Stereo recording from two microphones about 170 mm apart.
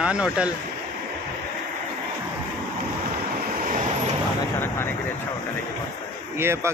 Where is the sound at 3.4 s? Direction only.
50° right (ahead or behind).